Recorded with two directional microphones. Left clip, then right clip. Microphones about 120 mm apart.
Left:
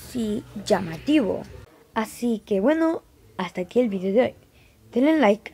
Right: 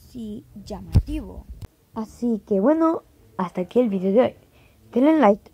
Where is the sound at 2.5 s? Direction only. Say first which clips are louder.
Right 2 dB; 5° right (ahead or behind).